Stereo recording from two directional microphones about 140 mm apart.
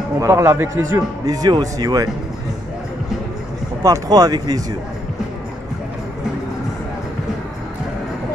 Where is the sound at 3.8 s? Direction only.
25° right (ahead or behind).